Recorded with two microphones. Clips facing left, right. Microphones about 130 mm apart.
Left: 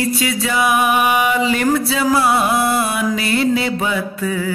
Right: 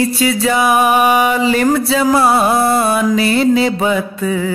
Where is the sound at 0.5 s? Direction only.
45° right (ahead or behind).